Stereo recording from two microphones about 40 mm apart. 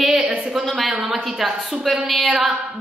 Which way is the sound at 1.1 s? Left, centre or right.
Centre.